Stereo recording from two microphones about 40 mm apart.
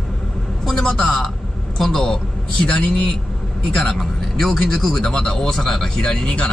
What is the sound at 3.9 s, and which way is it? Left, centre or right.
A man's voice, centre.